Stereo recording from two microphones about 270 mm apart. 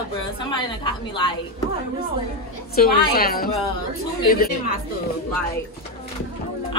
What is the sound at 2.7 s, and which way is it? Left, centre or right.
A woman's voice, left.